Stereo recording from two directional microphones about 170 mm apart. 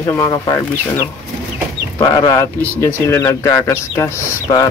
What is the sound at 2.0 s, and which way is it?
Speech, 20° left (ahead or behind).